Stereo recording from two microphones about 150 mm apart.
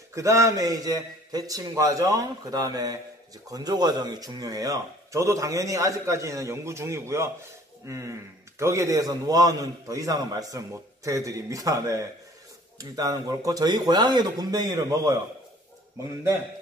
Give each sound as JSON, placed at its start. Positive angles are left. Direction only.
{"t": 0.1, "sound": "a man's voice", "side_deg": -20}